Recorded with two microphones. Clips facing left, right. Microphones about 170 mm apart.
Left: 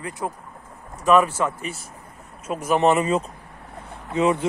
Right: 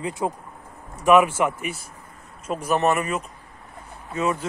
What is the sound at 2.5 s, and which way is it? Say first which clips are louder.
Speech: left 1 dB; 5° left (ahead or behind).